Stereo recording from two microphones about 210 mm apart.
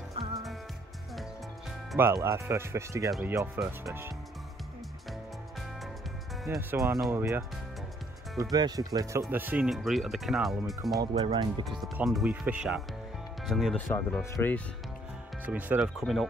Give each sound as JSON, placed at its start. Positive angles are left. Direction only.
{"t": 0.1, "sound": "music", "side_deg": -25}
{"t": 2.2, "sound": "speech", "side_deg": -15}
{"t": 3.1, "sound": "speech", "side_deg": -5}
{"t": 6.4, "sound": "speech", "side_deg": 0}
{"t": 7.1, "sound": "speech", "side_deg": -10}
{"t": 11.2, "sound": "speech", "side_deg": -20}
{"t": 11.8, "sound": "speech", "side_deg": 0}
{"t": 15.4, "sound": "speech", "side_deg": -10}